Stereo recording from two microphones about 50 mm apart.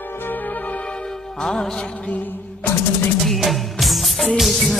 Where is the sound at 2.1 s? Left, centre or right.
Left.